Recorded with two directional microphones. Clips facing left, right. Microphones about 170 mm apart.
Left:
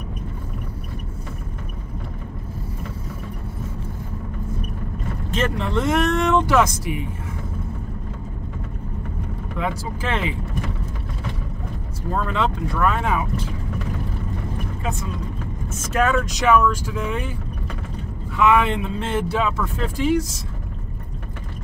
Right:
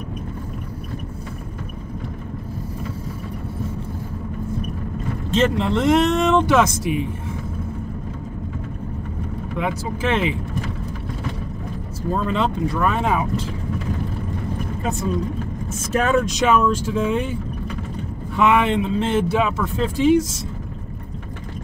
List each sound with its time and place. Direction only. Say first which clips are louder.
5.3 s speech: right 4 dB; 25° right (ahead or behind)
9.6 s speech: right 2 dB; 20° right (ahead or behind)
12.1 s speech: right 2 dB; 20° right (ahead or behind)
16.0 s speech: right 1 dB; 25° right (ahead or behind)
18.4 s speech: right 1 dB; 20° right (ahead or behind)